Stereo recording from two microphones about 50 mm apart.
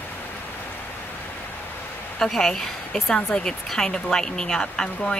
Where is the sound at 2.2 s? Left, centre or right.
Centre.